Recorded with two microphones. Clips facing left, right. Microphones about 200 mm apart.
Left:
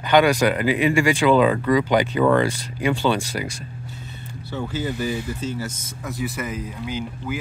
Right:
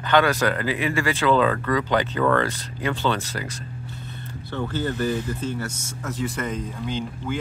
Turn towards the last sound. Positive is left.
turn(degrees=5)  # may be behind; listen again after turning